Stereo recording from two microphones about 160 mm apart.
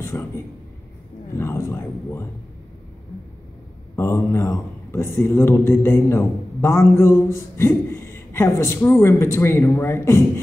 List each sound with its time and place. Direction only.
0.0 s a sound: 15° left (ahead or behind)
1.3 s a man's voice: 15° left (ahead or behind)
3.9 s a man's voice: 15° left (ahead or behind)